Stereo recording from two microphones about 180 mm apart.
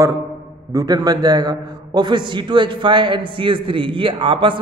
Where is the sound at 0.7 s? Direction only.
20° right (ahead or behind).